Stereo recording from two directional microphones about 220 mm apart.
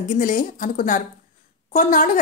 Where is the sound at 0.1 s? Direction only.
40° left (ahead or behind).